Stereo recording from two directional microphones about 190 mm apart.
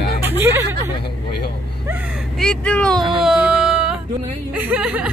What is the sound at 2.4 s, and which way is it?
Speech, 5° left (ahead or behind).